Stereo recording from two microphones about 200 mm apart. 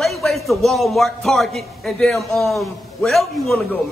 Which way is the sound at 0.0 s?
Centre (ahead or behind).